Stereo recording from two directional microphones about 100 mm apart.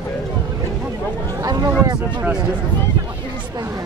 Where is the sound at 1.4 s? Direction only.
40° right (ahead or behind).